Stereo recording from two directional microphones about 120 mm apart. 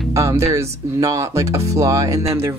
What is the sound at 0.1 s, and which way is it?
Speech, 25° right (ahead or behind).